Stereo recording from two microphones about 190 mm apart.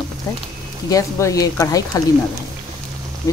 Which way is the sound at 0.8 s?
20° left (ahead or behind).